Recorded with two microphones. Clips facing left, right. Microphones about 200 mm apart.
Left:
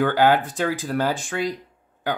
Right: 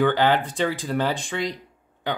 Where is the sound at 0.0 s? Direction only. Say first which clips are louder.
Left 1 dB; 10° left (ahead or behind).